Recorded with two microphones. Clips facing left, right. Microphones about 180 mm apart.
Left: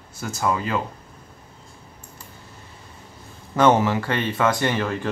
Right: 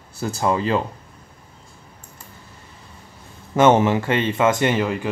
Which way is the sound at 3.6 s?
25° right (ahead or behind).